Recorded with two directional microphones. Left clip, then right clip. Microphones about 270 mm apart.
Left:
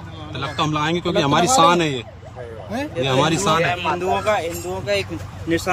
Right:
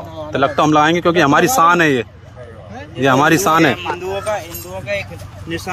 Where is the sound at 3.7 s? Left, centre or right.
Centre.